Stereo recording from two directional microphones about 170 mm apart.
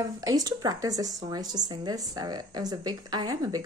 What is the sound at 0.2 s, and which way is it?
Speech, 20° right (ahead or behind).